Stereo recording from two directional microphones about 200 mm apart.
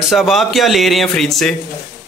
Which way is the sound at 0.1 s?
Centre (ahead or behind).